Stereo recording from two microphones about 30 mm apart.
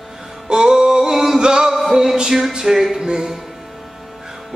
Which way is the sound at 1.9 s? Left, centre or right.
Centre.